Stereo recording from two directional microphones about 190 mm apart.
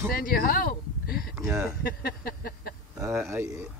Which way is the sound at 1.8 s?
55° left (ahead or behind).